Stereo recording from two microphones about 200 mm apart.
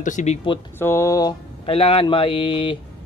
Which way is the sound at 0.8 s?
10° left (ahead or behind).